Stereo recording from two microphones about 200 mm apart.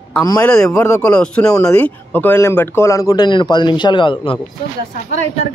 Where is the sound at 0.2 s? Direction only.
20° left (ahead or behind).